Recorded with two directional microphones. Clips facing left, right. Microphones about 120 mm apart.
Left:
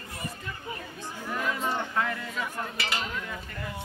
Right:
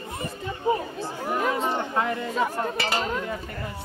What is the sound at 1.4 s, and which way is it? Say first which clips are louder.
Speech: right 6 dB; 35° right (ahead or behind).